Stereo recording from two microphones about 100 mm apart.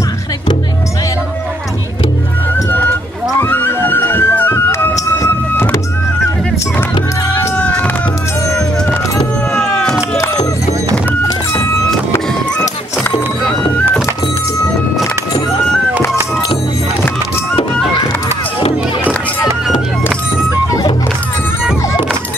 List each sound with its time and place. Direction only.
3.3 s music: 20° left (ahead or behind)
7.5 s a sound: 15° left (ahead or behind)
9.5 s cat: 10° left (ahead or behind)